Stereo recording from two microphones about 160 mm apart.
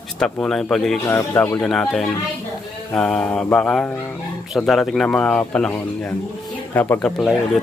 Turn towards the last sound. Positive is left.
turn(degrees=5)  # may be behind; listen again after turning